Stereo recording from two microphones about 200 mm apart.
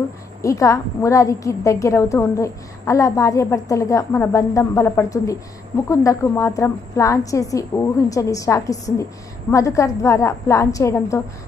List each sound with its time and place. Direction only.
0.4 s a woman's voice: 15° left (ahead or behind)